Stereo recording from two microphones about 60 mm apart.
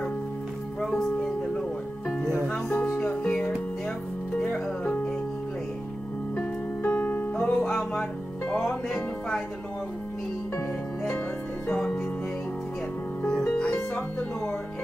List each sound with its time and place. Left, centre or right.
0.7 s music: centre
6.3 s music: left
7.6 s music: centre